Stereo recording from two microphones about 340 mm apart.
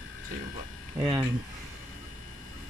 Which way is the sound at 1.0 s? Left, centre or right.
Centre.